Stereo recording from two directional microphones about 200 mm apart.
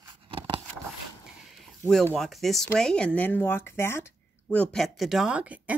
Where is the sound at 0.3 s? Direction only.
25° right (ahead or behind).